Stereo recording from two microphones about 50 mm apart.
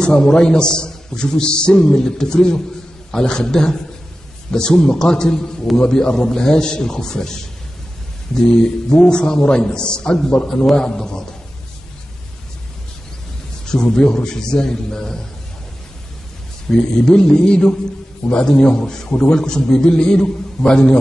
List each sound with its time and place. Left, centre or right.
0.0 s a man's voice: centre
9.0 s a man's voice: centre
13.7 s a man's voice: centre
16.7 s a man's voice: centre